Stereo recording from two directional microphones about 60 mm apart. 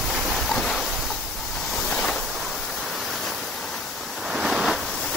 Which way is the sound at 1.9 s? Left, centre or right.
Centre.